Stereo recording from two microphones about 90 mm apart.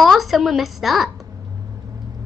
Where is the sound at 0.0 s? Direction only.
Centre (ahead or behind).